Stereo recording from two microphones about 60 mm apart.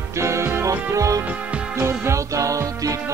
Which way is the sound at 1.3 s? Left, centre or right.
Centre.